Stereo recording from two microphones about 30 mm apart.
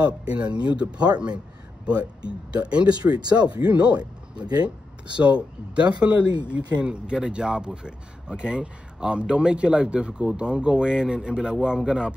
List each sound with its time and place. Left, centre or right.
0.0 s speech: right
6.5 s speech: right